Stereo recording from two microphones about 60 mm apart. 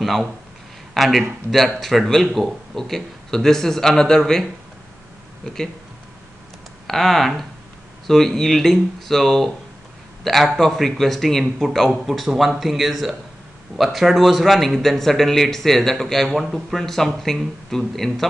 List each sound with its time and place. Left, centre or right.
0.9 s speech: centre
2.2 s speech: centre
2.7 s speech: centre
6.9 s speech: centre
11.9 s speech: centre